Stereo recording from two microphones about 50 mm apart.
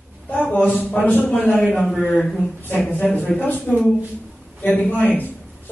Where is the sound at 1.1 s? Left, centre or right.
Left.